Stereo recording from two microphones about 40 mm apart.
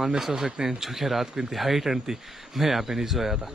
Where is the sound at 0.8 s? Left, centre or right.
Centre.